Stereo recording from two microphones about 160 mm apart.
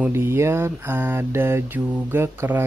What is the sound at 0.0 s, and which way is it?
Mantra, 15° right (ahead or behind).